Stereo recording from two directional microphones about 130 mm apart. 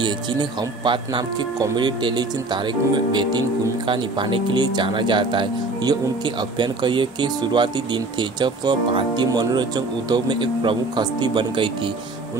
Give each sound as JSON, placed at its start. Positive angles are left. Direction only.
{"t": 0.0, "sound": "speech", "side_deg": -35}